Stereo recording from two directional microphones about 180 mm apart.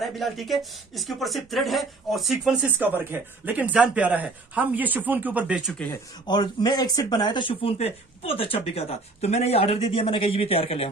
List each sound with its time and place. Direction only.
0.0 s speech: centre (ahead or behind)
5.9 s speech: 25° left (ahead or behind)